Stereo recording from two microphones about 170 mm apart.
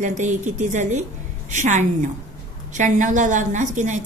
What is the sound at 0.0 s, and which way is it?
A woman's voice, 45° right (ahead or behind).